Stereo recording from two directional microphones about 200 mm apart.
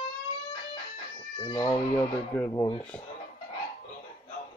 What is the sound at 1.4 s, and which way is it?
Speech, 25° left (ahead or behind).